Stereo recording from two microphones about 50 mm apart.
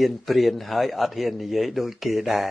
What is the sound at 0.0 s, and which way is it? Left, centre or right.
A man's voice, centre.